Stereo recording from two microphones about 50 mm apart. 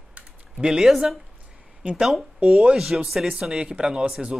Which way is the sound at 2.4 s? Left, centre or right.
Right.